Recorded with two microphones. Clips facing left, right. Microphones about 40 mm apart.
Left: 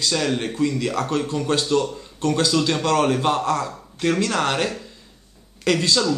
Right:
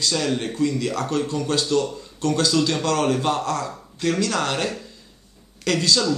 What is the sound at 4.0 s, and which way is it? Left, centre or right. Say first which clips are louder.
Speech: left 2 dB; left.